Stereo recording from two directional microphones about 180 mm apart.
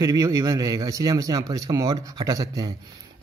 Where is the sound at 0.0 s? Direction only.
20° right (ahead or behind).